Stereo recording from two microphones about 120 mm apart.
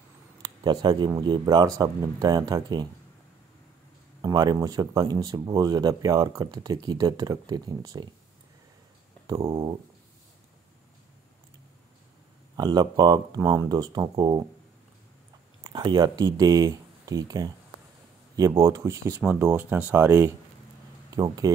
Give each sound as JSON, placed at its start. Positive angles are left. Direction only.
{"t": 0.4, "sound": "speech", "side_deg": -35}
{"t": 4.2, "sound": "speech", "side_deg": -35}
{"t": 9.5, "sound": "a sound", "side_deg": -40}
{"t": 12.5, "sound": "speech", "side_deg": -35}
{"t": 15.6, "sound": "speech", "side_deg": -40}
{"t": 18.6, "sound": "speech", "side_deg": -25}
{"t": 19.2, "sound": "speech", "side_deg": -15}
{"t": 21.1, "sound": "speech", "side_deg": -30}